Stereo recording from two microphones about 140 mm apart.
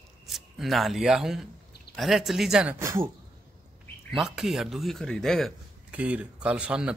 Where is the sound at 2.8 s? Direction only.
20° right (ahead or behind).